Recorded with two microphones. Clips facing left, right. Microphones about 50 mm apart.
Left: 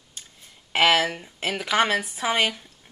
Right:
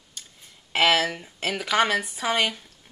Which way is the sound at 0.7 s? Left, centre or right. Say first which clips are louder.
Left 1 dB; centre.